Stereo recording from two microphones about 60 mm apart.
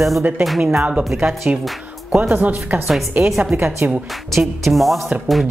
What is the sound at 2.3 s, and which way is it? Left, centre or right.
Speech, right.